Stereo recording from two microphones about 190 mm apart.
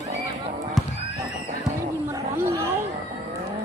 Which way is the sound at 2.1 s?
15° right (ahead or behind).